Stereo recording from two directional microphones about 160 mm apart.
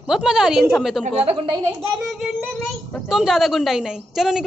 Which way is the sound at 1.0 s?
40° right (ahead or behind).